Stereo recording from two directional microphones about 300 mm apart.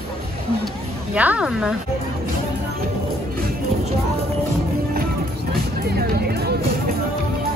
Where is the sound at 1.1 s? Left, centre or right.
Centre.